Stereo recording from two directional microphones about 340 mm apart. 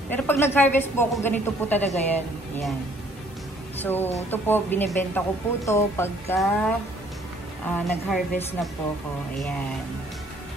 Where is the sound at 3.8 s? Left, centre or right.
Centre.